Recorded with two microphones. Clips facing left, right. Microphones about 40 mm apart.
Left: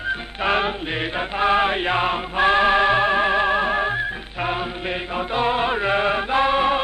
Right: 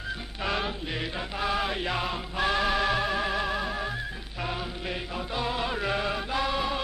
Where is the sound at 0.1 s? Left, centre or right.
Left.